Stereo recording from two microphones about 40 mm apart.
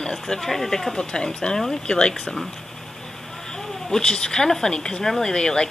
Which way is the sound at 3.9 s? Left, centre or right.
Centre.